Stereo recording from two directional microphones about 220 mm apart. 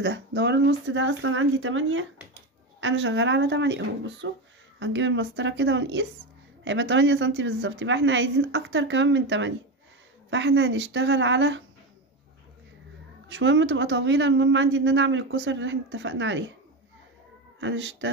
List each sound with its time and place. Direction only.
0.0 s speech: 50° right (ahead or behind)
13.3 s speech: 55° right (ahead or behind)
17.6 s speech: 55° right (ahead or behind)